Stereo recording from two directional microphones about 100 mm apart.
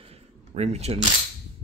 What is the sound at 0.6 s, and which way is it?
Speech, 90° right.